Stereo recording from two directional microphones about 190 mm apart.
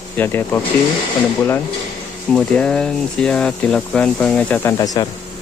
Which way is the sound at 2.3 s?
5° left (ahead or behind).